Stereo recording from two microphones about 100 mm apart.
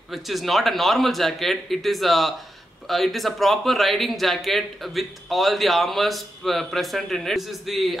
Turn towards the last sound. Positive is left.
turn(degrees=0)  # may be behind; listen again after turning